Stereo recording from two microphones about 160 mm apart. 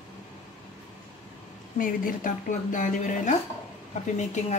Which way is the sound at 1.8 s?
60° left (ahead or behind).